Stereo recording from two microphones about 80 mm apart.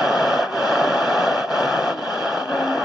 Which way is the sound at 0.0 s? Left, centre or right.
Centre.